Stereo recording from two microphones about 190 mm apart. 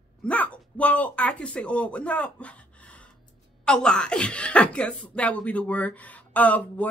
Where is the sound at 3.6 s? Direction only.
5° left (ahead or behind).